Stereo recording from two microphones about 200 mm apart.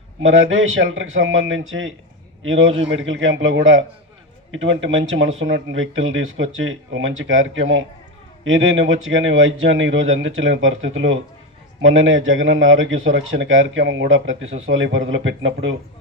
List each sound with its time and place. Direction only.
0.2 s a man's voice: 80° right